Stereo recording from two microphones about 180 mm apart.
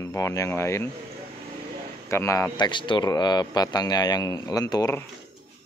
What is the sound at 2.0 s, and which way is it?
Speech, 15° left (ahead or behind).